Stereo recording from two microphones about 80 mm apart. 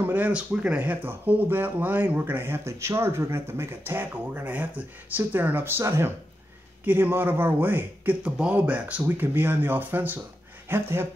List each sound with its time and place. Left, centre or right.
0.0 s speech: right